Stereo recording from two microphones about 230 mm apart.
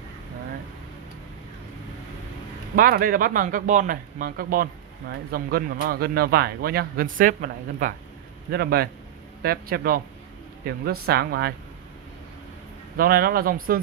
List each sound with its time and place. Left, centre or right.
2.7 s a man's voice: right
12.9 s a man's voice: right